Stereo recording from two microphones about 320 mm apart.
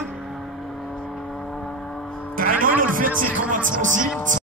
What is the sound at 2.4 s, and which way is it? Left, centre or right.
Music, right.